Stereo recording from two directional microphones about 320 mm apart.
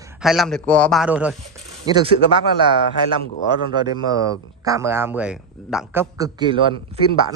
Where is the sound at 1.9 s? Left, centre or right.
Centre.